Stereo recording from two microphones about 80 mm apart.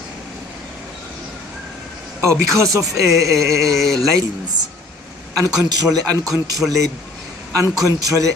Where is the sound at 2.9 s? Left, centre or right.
Right.